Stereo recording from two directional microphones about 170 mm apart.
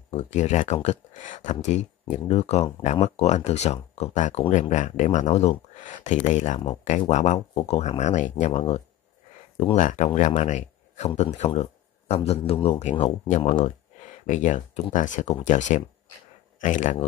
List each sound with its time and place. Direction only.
0.1 s speech: 40° left (ahead or behind)